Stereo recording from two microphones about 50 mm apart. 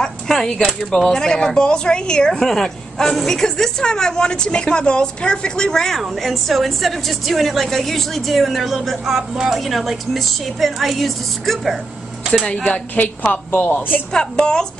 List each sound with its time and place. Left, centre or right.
0.0 s a sound: centre
0.9 s a woman's voice: centre
12.6 s a woman's voice: left
14.1 s a woman's voice: centre